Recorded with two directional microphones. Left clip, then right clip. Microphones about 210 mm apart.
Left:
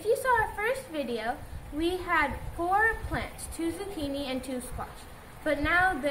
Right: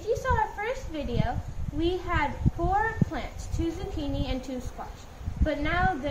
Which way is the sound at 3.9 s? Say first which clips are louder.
Even; 30° right (ahead or behind).